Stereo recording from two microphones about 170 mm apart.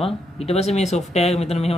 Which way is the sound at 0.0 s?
35° left (ahead or behind).